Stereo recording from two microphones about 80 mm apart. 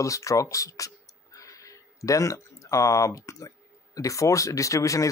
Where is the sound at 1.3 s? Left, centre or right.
Left.